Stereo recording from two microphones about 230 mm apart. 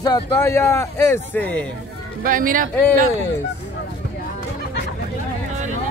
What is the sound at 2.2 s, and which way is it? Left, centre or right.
Speech, right.